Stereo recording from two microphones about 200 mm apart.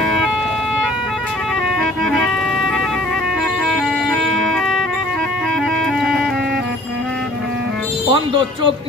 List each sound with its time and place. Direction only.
1.8 s music: centre (ahead or behind)
3.6 s music: centre (ahead or behind)
8.1 s speech: 25° right (ahead or behind)